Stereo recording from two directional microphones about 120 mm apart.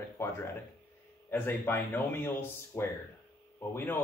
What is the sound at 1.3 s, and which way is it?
Speech, 15° left (ahead or behind).